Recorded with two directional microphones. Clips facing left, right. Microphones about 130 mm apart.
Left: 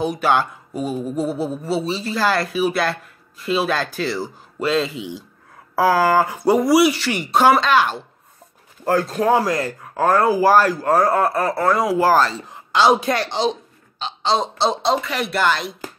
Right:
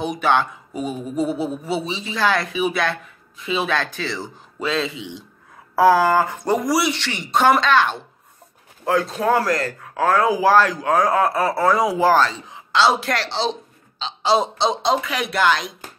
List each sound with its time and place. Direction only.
0.0 s speech: 5° left (ahead or behind)
9.3 s speech: 20° left (ahead or behind)
12.8 s a man's voice: 20° left (ahead or behind)
14.2 s speech: 5° right (ahead or behind)